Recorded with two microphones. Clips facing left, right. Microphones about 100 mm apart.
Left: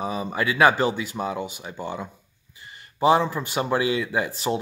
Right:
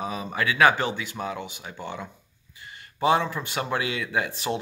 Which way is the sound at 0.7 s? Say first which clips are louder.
Left 3 dB; 35° left (ahead or behind).